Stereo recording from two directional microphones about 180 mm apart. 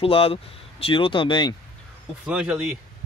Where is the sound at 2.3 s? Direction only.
5° right (ahead or behind).